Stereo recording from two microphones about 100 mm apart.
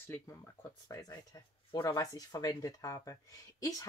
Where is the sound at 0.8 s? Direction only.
35° left (ahead or behind).